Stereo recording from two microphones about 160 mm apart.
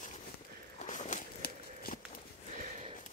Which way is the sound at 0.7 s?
50° left (ahead or behind).